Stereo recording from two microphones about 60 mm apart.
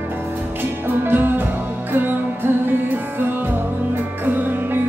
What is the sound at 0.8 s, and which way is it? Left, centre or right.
Music, right.